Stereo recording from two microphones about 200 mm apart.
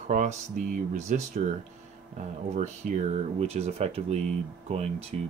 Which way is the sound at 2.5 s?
35° right (ahead or behind).